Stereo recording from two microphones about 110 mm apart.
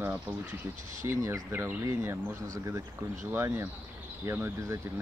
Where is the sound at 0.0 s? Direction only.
15° right (ahead or behind).